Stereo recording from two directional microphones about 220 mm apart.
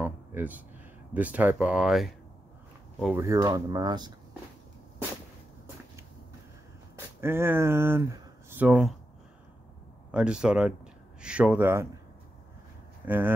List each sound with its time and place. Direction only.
0.0 s a sound: 10° right (ahead or behind)
1.1 s speech: 5° right (ahead or behind)
7.2 s speech: 10° right (ahead or behind)
10.1 s speech: 5° right (ahead or behind)
13.0 s speech: 10° right (ahead or behind)